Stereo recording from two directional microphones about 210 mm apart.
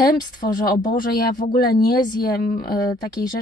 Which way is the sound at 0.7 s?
40° left (ahead or behind).